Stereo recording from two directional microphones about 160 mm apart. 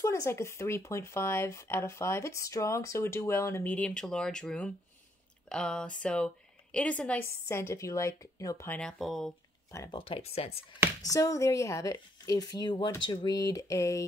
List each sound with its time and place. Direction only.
0.0 s speech: 20° left (ahead or behind); by 9.3 s centre (ahead or behind)
9.8 s speech: 35° left (ahead or behind)
11.1 s speech: 20° left (ahead or behind)